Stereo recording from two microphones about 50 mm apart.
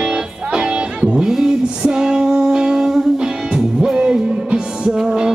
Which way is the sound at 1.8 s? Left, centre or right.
Centre.